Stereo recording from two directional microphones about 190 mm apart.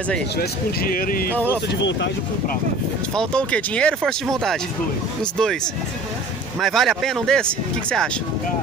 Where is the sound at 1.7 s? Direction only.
70° left (ahead or behind).